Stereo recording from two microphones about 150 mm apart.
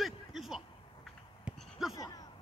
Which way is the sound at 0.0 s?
Centre (ahead or behind).